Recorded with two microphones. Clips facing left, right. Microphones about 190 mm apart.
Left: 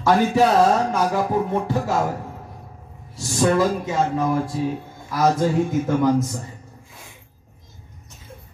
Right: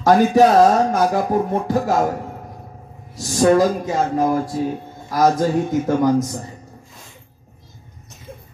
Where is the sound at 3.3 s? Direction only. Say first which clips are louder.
Right 4 dB; 40° right (ahead or behind).